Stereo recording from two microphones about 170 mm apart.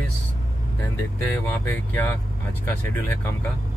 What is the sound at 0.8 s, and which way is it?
Speech, 15° left (ahead or behind).